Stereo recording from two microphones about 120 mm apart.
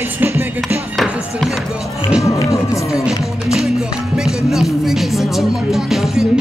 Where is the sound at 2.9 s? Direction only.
5° right (ahead or behind).